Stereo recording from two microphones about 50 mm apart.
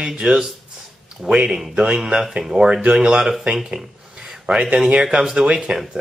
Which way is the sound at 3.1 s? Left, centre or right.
Centre.